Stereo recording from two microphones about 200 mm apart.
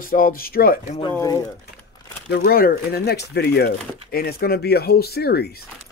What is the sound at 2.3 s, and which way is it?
Speech, 50° left (ahead or behind).